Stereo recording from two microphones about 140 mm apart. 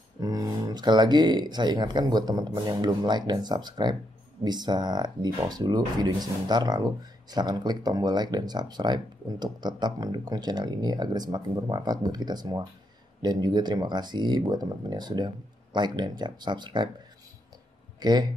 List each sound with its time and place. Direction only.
0.2 s speech: 25° right (ahead or behind)
17.9 s speech: 30° right (ahead or behind)